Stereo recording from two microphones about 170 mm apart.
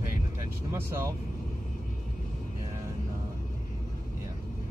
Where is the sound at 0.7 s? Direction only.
15° right (ahead or behind).